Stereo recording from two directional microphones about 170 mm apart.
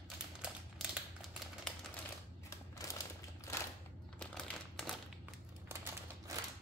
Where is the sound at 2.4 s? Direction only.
20° left (ahead or behind).